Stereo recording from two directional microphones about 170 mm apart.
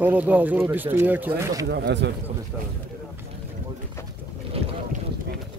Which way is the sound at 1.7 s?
85° right.